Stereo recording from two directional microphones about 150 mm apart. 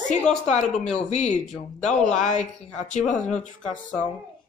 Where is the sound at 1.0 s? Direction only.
50° left (ahead or behind).